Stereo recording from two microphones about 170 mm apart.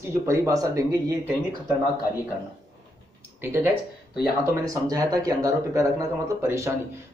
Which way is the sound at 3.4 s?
15° right (ahead or behind).